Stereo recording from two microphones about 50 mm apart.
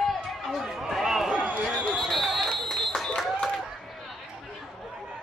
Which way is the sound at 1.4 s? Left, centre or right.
Right.